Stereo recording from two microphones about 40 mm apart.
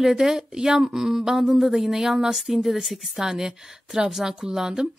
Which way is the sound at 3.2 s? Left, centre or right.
Centre.